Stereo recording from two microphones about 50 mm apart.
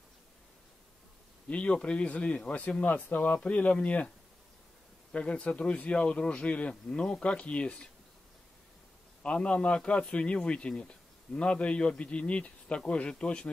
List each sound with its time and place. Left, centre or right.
1.5 s a man's voice: left
2.8 s a man's voice: left
5.1 s a man's voice: left
9.2 s a man's voice: left